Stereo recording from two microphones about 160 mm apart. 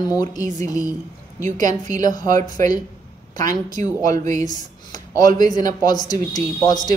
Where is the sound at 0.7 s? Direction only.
20° left (ahead or behind).